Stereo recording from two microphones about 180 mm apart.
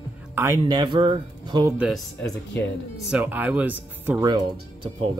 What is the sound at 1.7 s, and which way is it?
Speech, 5° right (ahead or behind).